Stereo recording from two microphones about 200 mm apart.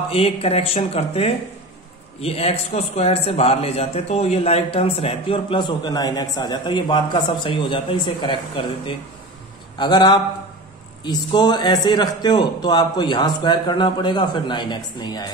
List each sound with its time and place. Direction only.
0.1 s a man's voice: 30° left (ahead or behind)